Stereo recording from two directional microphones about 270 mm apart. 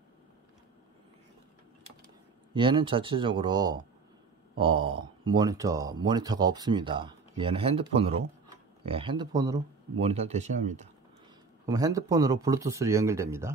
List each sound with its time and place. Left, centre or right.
2.5 s speech: centre
11.6 s speech: centre